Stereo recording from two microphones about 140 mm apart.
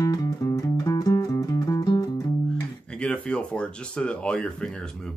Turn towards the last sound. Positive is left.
turn(degrees=5)  # may be behind; listen again after turning